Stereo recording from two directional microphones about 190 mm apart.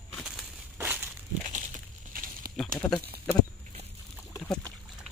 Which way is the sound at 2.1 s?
45° right (ahead or behind).